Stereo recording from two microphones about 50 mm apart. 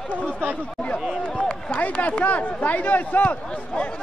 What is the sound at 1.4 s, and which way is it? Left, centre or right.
Speech, left.